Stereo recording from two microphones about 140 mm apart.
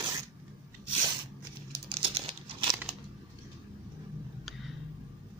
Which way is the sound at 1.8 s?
40° right (ahead or behind).